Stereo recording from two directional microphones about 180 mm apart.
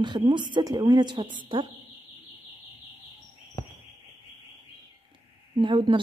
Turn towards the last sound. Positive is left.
turn(degrees=-25)  # may be behind; listen again after turning